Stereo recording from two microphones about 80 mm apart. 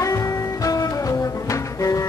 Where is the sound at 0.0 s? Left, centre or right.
Left.